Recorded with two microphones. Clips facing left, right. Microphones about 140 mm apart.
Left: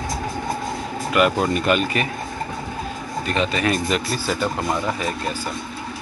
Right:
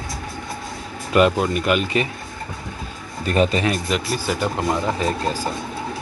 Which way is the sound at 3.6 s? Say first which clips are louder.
Left 1 dB; 15° right (ahead or behind).